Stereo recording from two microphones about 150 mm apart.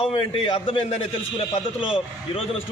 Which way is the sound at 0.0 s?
40° left (ahead or behind).